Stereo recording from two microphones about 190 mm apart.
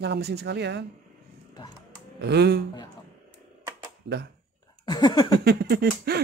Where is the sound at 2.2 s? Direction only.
60° right (ahead or behind).